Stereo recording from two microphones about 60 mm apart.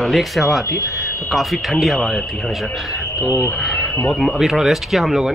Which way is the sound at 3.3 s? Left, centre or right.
Left.